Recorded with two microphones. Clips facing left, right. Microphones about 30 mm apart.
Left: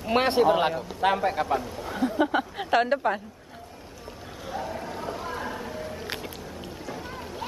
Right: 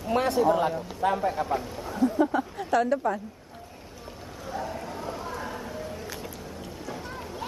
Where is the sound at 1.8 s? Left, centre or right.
Left.